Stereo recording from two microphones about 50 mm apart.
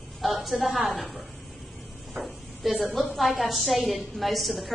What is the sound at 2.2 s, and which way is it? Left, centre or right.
A woman's voice, centre.